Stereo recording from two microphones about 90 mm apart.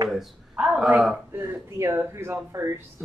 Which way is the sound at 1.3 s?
25° right (ahead or behind).